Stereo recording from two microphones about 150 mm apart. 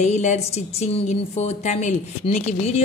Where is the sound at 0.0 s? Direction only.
50° left (ahead or behind).